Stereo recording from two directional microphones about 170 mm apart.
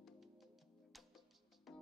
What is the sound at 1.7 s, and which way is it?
Music, centre (ahead or behind).